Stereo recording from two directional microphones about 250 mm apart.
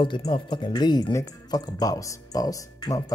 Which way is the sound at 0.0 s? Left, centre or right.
Centre.